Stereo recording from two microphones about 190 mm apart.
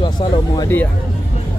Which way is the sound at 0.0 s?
25° left (ahead or behind).